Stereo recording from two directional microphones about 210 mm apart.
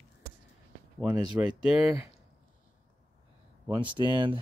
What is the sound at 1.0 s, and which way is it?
Speech, 10° right (ahead or behind).